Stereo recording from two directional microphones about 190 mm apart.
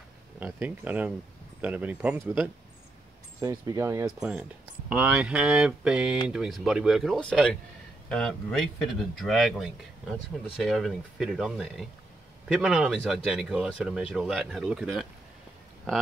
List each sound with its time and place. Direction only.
0.4 s speech: 10° right (ahead or behind)
3.3 s speech: 15° right (ahead or behind)
4.0 s speech: 5° right (ahead or behind)